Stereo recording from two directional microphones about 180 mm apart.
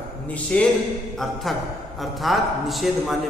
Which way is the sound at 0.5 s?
5° left (ahead or behind).